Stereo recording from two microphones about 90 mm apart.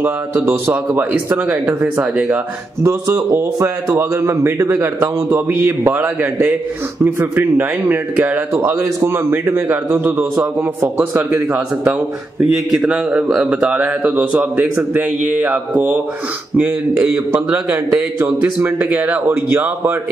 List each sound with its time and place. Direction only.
0.0 s speech: 25° right (ahead or behind)
2.8 s a man's voice: 30° right (ahead or behind); by 14.7 s 10° right (ahead or behind)
15.7 s speech: 20° right (ahead or behind)